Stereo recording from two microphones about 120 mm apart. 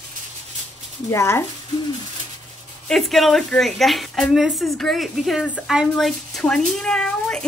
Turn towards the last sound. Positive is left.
turn(degrees=5)  # may be behind; listen again after turning